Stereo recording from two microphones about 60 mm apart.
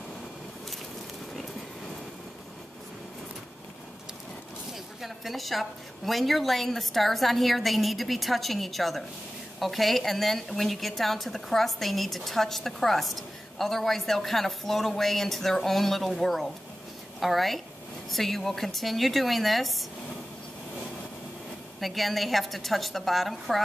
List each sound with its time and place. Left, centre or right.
5.0 s a woman's voice: centre
21.7 s a woman's voice: centre